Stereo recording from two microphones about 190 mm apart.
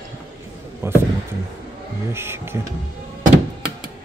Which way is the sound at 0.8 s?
10° right (ahead or behind).